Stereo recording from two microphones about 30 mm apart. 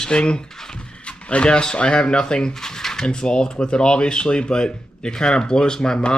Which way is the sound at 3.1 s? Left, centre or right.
Left.